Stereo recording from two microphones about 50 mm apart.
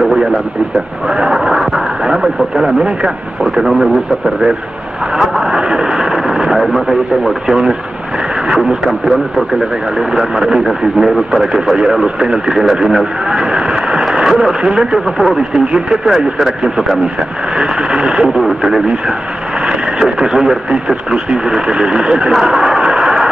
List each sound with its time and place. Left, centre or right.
1.0 s speech: centre
5.1 s a sound: centre
8.5 s speech: centre
14.1 s radio: centre
14.6 s speech: centre